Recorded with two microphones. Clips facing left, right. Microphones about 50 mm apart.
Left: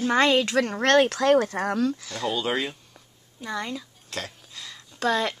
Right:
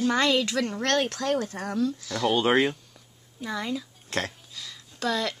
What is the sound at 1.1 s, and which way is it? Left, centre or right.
Speech, left.